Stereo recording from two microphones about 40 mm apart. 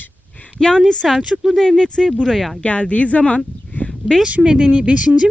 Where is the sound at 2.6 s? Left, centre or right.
Left.